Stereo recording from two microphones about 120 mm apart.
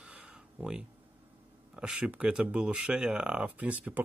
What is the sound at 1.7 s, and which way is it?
Speech, 10° right (ahead or behind).